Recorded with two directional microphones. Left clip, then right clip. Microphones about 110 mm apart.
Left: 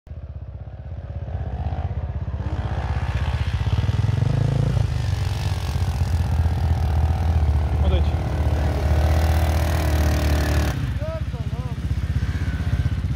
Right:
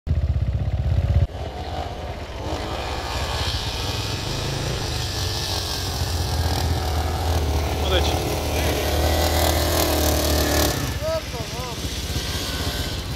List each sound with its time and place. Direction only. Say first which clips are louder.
3.2 s vehicle: right 7 dB; centre (ahead or behind)
9.0 s vehicle: right 7 dB; 15° right (ahead or behind)